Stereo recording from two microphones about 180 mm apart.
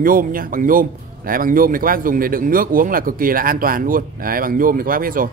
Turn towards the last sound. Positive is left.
turn(degrees=-50)  # may be behind; listen again after turning